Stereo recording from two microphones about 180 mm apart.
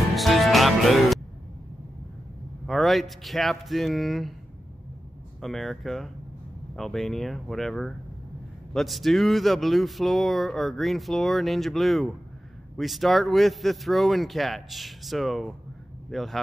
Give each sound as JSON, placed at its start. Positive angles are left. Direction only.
{"t": 0.1, "sound": "music", "side_deg": 0}
{"t": 2.6, "sound": "speech", "side_deg": 0}
{"t": 5.4, "sound": "speech", "side_deg": 0}